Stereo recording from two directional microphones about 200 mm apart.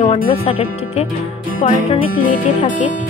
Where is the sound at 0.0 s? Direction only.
35° left (ahead or behind).